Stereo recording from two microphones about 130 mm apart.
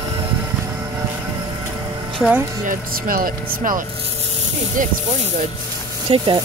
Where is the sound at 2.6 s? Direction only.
90° right.